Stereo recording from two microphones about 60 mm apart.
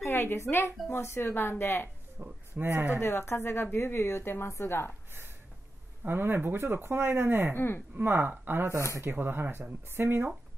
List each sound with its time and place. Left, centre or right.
0.0 s a woman's voice: left
2.2 s a sound: right
2.5 s speech: right
3.0 s a woman's voice: left
6.0 s speech: right
7.5 s a woman's voice: left
7.9 s speech: right